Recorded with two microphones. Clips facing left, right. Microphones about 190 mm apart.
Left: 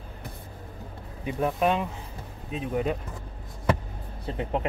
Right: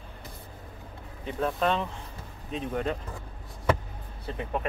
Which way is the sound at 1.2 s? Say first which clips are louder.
Left 2 dB; 10° left (ahead or behind).